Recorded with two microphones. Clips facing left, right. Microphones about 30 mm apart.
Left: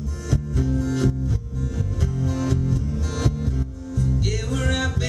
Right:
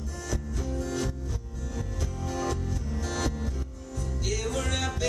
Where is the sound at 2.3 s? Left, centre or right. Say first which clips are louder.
Left 3 dB; left.